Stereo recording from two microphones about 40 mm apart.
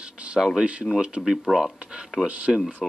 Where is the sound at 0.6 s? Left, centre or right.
Right.